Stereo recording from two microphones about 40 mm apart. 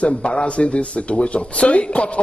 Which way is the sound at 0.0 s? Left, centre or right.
Left.